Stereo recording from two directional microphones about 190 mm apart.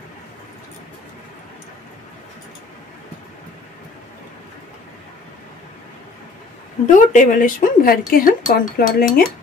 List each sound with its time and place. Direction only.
6.9 s speech: 40° left (ahead or behind)